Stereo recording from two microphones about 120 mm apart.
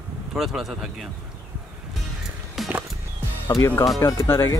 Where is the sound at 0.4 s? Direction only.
5° right (ahead or behind).